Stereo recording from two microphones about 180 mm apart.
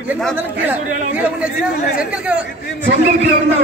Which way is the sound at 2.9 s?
90° right.